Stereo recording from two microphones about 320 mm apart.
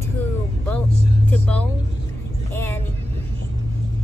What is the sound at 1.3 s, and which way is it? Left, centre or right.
Speech, centre.